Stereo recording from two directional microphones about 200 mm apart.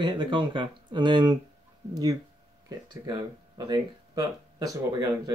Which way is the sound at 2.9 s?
20° right (ahead or behind).